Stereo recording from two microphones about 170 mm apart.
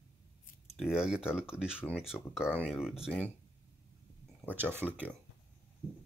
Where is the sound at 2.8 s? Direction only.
5° right (ahead or behind).